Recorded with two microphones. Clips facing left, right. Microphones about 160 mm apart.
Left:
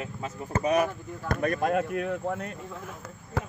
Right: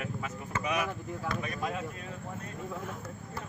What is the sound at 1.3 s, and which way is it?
Speech, 55° left (ahead or behind).